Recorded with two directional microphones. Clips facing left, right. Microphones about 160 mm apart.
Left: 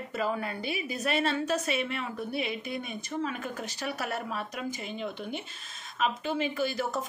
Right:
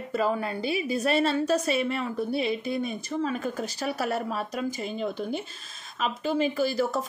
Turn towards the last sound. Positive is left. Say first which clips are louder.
# right 5 dB
turn(degrees=-35)  # may be behind; listen again after turning